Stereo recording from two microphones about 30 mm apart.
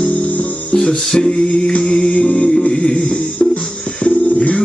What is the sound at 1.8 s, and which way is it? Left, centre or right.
Music, left.